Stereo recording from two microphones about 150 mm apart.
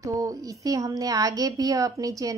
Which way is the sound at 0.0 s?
25° right (ahead or behind).